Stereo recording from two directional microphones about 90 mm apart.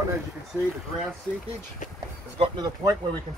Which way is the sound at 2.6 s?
45° right (ahead or behind).